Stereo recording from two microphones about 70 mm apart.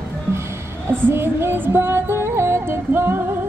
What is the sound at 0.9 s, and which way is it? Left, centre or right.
Music, right.